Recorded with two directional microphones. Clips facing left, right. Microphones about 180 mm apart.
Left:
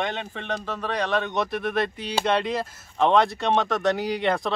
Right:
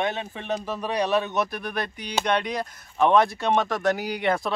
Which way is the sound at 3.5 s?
Centre (ahead or behind).